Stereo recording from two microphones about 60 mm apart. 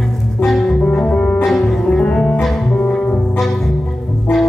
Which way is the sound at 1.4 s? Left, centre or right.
Centre.